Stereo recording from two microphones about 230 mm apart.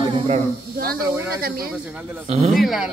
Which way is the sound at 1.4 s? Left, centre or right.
Right.